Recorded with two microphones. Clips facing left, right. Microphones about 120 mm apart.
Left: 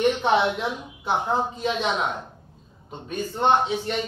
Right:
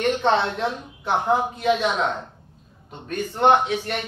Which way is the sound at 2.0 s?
15° left (ahead or behind).